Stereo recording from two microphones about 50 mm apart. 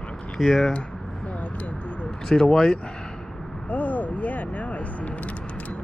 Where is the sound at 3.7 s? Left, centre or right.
Left.